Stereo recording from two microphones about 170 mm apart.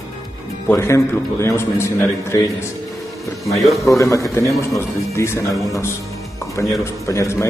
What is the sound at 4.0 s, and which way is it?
Speech, 20° left (ahead or behind).